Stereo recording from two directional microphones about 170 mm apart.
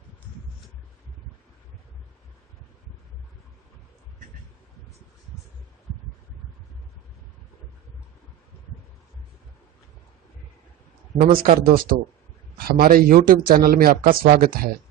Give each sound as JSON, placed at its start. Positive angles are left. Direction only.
{"t": 11.1, "sound": "a man's voice", "side_deg": -55}